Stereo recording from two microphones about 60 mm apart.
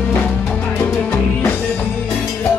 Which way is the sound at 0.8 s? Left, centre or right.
Left.